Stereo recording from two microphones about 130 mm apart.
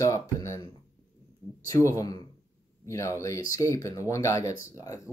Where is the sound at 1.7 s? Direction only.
25° left (ahead or behind).